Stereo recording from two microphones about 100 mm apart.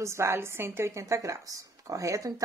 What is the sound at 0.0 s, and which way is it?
Speech, 30° right (ahead or behind).